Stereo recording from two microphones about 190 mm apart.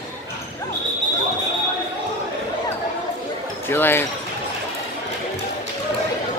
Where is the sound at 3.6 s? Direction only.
10° left (ahead or behind).